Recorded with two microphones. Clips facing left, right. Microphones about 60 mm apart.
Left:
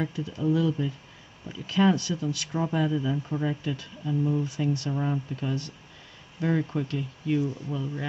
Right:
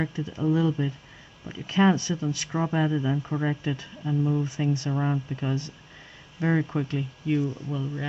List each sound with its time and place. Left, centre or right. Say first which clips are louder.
0.0 s speech: right 1 dB; right
7.4 s speech: right 1 dB; centre